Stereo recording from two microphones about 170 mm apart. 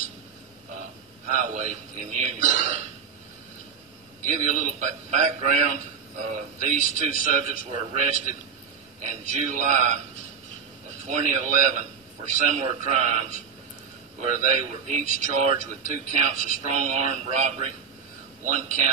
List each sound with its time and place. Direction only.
1.3 s a man's voice: 45° right (ahead or behind)
4.2 s a man's voice: 45° right (ahead or behind)
9.3 s a man's voice: 45° right (ahead or behind)
11.1 s a man's voice: 45° right (ahead or behind)